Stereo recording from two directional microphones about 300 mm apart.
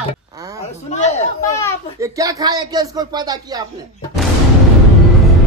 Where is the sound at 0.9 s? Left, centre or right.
Left.